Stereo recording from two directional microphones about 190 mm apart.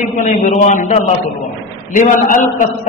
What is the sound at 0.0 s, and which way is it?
A man's voice, 40° left (ahead or behind).